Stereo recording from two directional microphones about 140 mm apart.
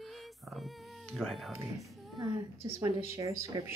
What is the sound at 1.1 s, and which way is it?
Speech, centre (ahead or behind).